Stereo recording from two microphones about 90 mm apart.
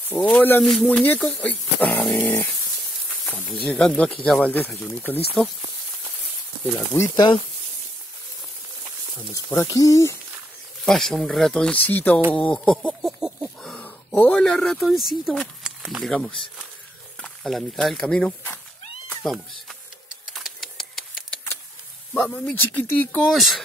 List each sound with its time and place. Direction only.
0.1 s speech: 20° left (ahead or behind)
0.6 s speech: 5° left (ahead or behind)
0.8 s speech: 20° left (ahead or behind)
3.4 s speech: 5° left (ahead or behind)
6.6 s speech: 25° left (ahead or behind)
9.3 s speech: 30° left (ahead or behind)
10.8 s speech: 5° left (ahead or behind)
13.0 s a sound: centre (ahead or behind)
13.7 s speech: 20° left (ahead or behind); by 16.2 s centre (ahead or behind)
17.2 s speech: centre (ahead or behind)
20.3 s typewriter: centre (ahead or behind)
22.2 s speech: 10° left (ahead or behind)
23.3 s speech: centre (ahead or behind)